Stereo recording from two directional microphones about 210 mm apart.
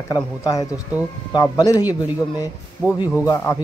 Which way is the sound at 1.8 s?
10° right (ahead or behind).